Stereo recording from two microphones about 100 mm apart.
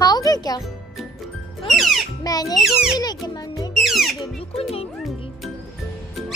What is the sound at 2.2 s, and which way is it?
Speech, 40° left (ahead or behind).